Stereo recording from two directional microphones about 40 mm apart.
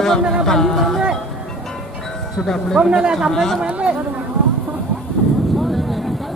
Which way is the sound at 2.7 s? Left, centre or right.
Right.